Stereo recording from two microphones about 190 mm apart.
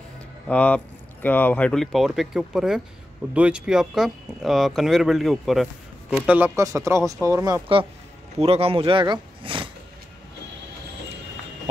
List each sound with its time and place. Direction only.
0.5 s speech: 5° left (ahead or behind); by 7.6 s 15° right (ahead or behind)
8.4 s speech: 30° right (ahead or behind)